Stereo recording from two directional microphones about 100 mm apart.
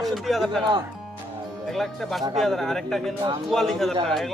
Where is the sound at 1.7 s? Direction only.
5° left (ahead or behind).